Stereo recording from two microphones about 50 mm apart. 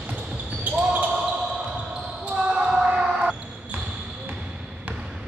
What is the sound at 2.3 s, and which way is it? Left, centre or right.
Basketball bounce, right.